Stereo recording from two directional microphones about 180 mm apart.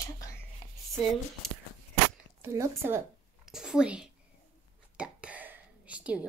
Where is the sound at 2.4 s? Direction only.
15° right (ahead or behind).